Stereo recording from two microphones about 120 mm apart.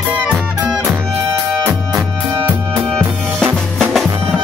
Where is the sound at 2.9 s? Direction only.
5° left (ahead or behind).